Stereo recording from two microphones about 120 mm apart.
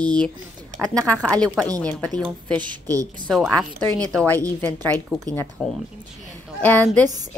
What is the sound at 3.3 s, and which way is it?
Speech, centre (ahead or behind).